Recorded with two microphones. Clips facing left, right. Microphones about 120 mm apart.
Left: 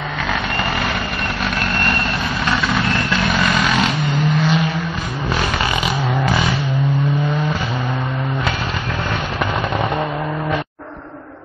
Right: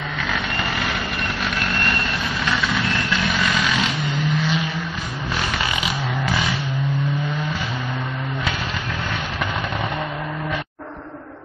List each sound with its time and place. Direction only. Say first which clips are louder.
1.4 s vehicle: left 4 dB; 50° left (ahead or behind)